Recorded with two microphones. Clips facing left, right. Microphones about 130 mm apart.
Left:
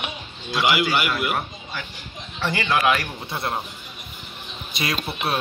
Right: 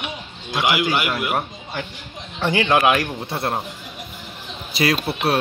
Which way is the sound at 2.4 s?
50° right (ahead or behind).